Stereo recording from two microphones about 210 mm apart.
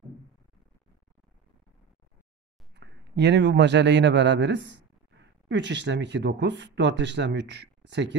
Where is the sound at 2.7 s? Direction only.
55° right (ahead or behind).